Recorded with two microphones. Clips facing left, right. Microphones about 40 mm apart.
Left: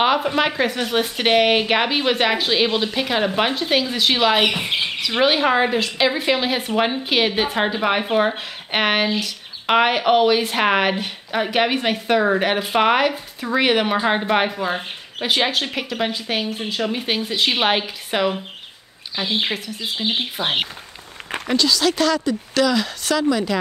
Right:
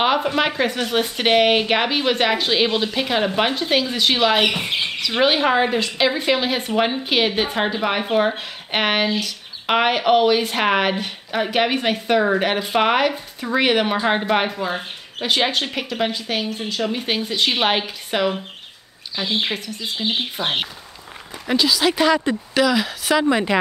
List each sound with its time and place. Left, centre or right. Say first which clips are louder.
0.0 s a woman's voice: left 1 dB; centre
21.5 s speech: right 1 dB; centre
23.2 s speech: right 2 dB; right